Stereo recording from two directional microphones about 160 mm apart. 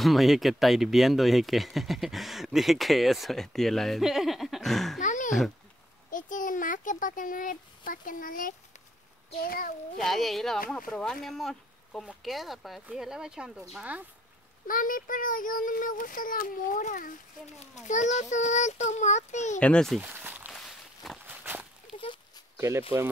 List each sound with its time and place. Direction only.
0.0 s speech: centre (ahead or behind)
5.0 s a sound: 50° left (ahead or behind)
6.0 s a child's voice: 55° left (ahead or behind)
9.9 s speech: centre (ahead or behind)
14.7 s a child's voice: 60° left (ahead or behind)
19.6 s speech: 5° left (ahead or behind)
20.0 s speech: 10° right (ahead or behind)
20.5 s walk: centre (ahead or behind)
21.3 s walk: 10° right (ahead or behind)
21.9 s a sound: 30° left (ahead or behind)
22.6 s speech: 20° right (ahead or behind)